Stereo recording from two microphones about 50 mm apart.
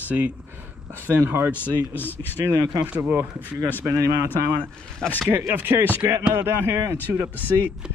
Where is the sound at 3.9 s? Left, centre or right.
Right.